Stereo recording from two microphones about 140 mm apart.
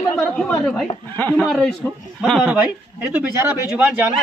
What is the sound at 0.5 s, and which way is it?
Speech, 5° left (ahead or behind).